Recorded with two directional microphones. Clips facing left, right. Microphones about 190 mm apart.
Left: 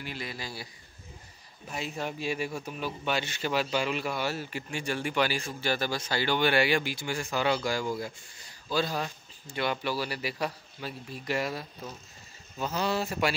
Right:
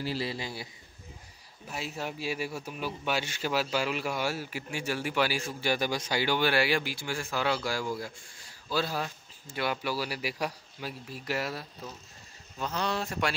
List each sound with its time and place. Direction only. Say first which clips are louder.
0.0 s a man's voice: right 5 dB; 30° right (ahead or behind)
1.7 s speech: left 2 dB; 5° right (ahead or behind)